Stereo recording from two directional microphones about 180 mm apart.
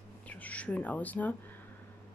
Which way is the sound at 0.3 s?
10° left (ahead or behind).